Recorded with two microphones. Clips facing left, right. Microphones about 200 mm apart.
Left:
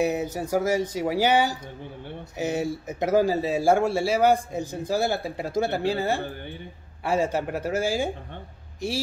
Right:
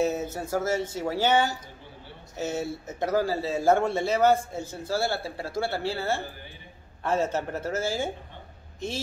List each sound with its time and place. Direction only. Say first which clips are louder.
0.0 s speech: left 2 dB; 15° left (ahead or behind)